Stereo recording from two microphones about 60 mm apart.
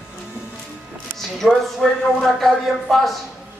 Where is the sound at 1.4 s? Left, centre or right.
Centre.